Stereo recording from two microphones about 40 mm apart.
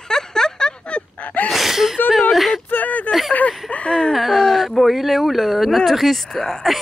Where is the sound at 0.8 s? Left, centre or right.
Left.